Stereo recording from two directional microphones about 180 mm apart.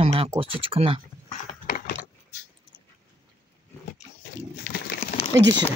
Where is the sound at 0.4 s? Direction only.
30° right (ahead or behind).